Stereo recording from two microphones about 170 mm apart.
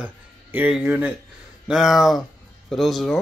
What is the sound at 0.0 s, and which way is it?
Speech, 10° right (ahead or behind).